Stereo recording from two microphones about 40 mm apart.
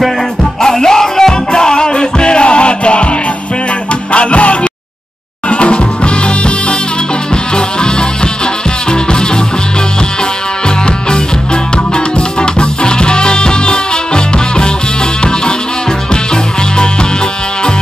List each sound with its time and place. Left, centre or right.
0.6 s music: centre
4.1 s music: left
12.4 s music: left